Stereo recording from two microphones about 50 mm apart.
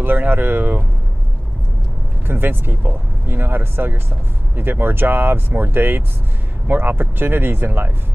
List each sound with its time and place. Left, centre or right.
0.0 s speech: right
2.2 s speech: right